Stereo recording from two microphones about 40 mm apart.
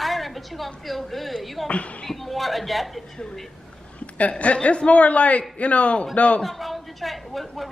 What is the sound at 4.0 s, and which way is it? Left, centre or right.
Speech, left.